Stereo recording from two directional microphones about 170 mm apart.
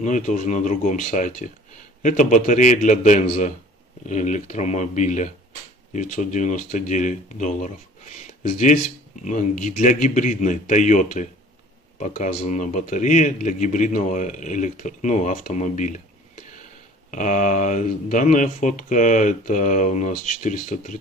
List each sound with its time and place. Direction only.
0.0 s speech: 45° left (ahead or behind)
17.1 s speech: 50° left (ahead or behind)